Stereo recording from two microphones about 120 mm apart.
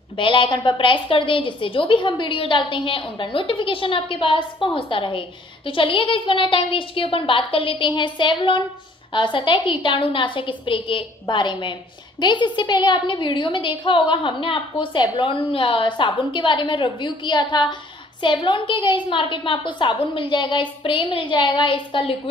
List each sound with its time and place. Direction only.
0.2 s a woman's voice: 45° left (ahead or behind)